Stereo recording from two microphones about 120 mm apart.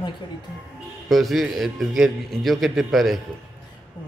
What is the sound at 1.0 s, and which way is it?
A man's voice, centre (ahead or behind).